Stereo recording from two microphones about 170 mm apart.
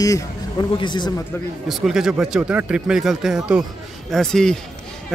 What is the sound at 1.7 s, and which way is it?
Speech, centre (ahead or behind).